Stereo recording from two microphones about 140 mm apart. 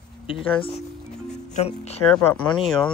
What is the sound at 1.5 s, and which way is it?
Speech, 50° left (ahead or behind).